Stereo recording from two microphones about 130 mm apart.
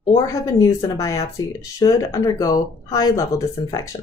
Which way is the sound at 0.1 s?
25° left (ahead or behind).